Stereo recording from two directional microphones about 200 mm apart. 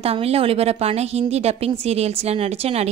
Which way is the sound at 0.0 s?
30° right (ahead or behind).